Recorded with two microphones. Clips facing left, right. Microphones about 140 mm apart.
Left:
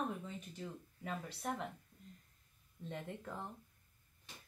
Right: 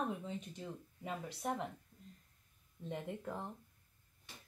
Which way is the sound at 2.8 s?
15° right (ahead or behind).